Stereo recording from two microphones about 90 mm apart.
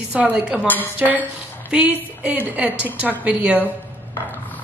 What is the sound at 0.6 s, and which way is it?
Speech, 20° left (ahead or behind).